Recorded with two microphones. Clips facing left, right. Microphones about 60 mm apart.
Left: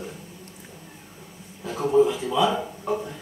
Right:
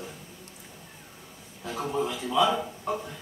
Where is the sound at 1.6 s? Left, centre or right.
Centre.